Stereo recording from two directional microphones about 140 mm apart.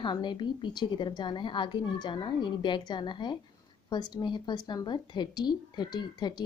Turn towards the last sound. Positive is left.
turn(degrees=30)  # may be behind; listen again after turning